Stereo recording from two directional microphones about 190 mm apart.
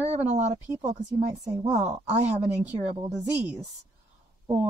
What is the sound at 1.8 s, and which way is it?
Speech, 35° right (ahead or behind).